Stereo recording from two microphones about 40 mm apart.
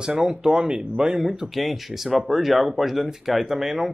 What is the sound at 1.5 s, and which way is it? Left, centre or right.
Speech, centre.